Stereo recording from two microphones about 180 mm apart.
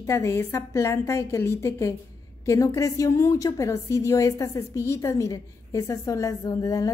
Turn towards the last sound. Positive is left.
turn(degrees=20)  # may be behind; listen again after turning